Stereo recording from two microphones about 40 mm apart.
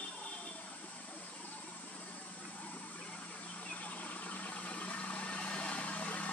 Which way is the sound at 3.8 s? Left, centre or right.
Left.